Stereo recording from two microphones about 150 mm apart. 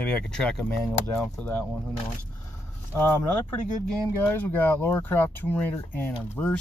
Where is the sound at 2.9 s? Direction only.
15° left (ahead or behind).